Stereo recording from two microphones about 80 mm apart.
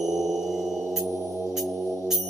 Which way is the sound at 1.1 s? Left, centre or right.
Right.